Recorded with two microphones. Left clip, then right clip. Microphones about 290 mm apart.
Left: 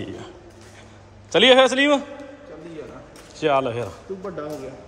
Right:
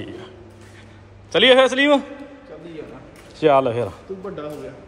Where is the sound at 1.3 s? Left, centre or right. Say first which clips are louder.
Right 1 dB; centre.